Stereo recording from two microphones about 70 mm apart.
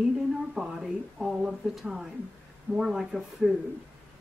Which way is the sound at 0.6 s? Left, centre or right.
Centre.